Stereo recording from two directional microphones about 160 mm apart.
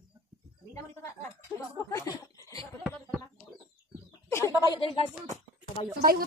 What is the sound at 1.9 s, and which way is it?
Speech, 20° left (ahead or behind).